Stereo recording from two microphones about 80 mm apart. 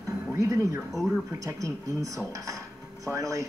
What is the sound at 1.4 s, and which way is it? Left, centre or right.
Speech, right.